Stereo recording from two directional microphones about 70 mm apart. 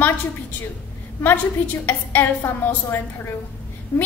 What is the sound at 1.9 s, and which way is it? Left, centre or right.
A woman's voice, left.